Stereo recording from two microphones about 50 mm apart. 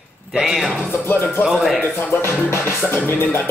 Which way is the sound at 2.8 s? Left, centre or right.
Left.